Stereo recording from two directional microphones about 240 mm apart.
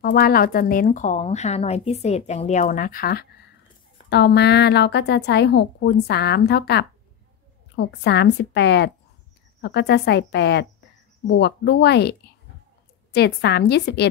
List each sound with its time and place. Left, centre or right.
0.0 s a woman's voice: left